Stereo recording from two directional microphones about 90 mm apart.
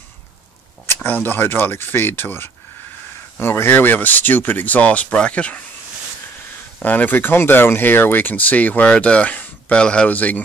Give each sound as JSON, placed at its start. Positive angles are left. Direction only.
{"t": 0.8, "sound": "speech", "side_deg": 20}
{"t": 6.8, "sound": "speech", "side_deg": 20}